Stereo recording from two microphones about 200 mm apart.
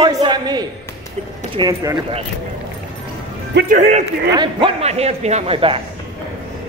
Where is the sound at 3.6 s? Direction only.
40° right (ahead or behind).